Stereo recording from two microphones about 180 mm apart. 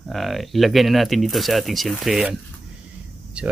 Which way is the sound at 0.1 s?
Centre (ahead or behind).